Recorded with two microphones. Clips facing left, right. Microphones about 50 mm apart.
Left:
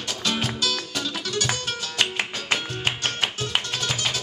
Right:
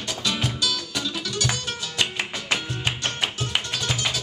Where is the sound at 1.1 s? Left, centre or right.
Left.